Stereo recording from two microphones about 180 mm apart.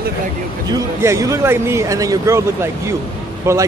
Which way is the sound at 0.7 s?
15° right (ahead or behind).